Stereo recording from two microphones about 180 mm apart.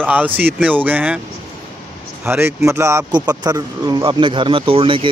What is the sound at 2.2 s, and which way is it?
Speech, 10° right (ahead or behind).